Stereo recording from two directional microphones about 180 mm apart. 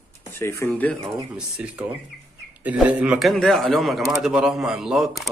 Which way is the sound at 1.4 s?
5° right (ahead or behind).